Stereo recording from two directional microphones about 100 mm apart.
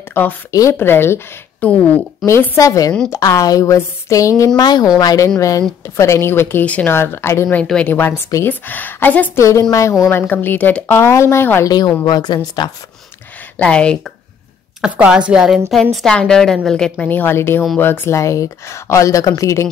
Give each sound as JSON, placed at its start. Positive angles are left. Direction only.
{"t": 0.2, "sound": "speech", "side_deg": 20}
{"t": 0.5, "sound": "speech", "side_deg": 35}
{"t": 0.7, "sound": "a woman's voice", "side_deg": 25}
{"t": 2.5, "sound": "speech", "side_deg": 35}
{"t": 6.6, "sound": "a woman's voice", "side_deg": 15}
{"t": 7.0, "sound": "speech", "side_deg": 25}
{"t": 7.4, "sound": "a woman's voice", "side_deg": 10}
{"t": 9.4, "sound": "speech", "side_deg": 30}
{"t": 10.2, "sound": "speech", "side_deg": 20}
{"t": 12.0, "sound": "a woman's voice", "side_deg": 45}
{"t": 13.6, "sound": "a woman's voice", "side_deg": 10}
{"t": 14.8, "sound": "a woman's voice", "side_deg": -10}
{"t": 17.1, "sound": "speech", "side_deg": 20}